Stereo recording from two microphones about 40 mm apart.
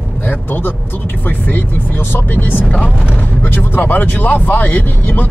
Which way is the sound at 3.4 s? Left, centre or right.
Left.